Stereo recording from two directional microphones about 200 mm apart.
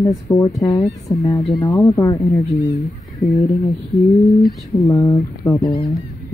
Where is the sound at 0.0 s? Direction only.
15° left (ahead or behind).